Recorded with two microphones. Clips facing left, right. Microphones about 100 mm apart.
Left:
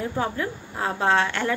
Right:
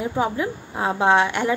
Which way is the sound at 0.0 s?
15° right (ahead or behind).